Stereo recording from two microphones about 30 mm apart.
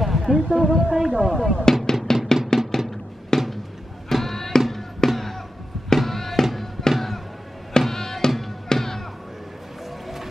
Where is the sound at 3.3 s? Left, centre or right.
Centre.